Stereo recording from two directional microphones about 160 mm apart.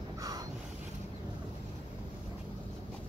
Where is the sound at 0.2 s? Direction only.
20° right (ahead or behind).